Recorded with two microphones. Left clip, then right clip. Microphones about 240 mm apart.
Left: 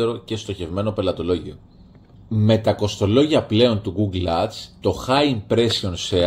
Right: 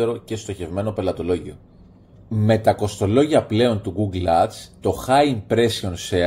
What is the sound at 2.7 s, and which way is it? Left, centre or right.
Speech, right.